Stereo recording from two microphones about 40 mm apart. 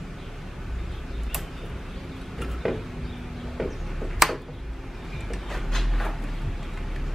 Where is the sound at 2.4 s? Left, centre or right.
Centre.